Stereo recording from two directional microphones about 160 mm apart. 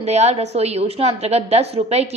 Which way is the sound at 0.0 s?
45° right (ahead or behind).